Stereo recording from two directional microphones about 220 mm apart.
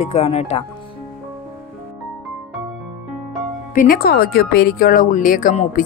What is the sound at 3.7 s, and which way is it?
Speech, 40° left (ahead or behind).